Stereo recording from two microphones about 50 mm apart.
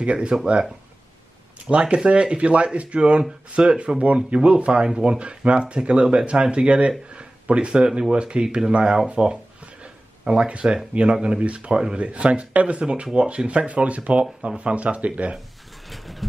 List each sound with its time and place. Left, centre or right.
0.0 s a man's voice: right
1.7 s a man's voice: right
15.9 s vehicle: centre